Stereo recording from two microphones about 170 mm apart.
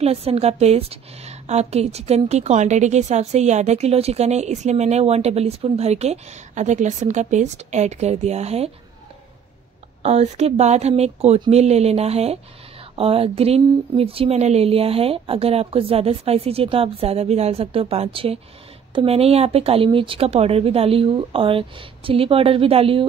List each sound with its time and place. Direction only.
0.0 s a woman's voice: 35° right (ahead or behind)
10.0 s a woman's voice: 40° right (ahead or behind)